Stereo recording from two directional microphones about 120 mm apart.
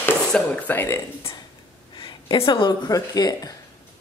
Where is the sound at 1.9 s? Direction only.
40° left (ahead or behind).